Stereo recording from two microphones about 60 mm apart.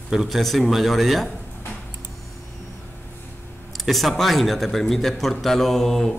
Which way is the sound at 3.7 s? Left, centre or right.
Centre.